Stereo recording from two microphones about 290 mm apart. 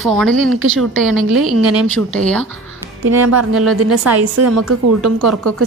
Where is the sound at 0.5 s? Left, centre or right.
Right.